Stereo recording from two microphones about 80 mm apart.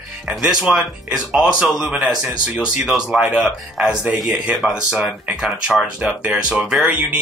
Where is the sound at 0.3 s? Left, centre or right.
Centre.